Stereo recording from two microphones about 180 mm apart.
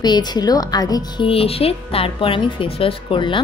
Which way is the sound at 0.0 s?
25° left (ahead or behind).